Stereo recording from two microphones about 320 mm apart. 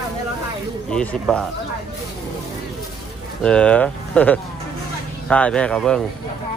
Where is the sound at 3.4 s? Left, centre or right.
Centre.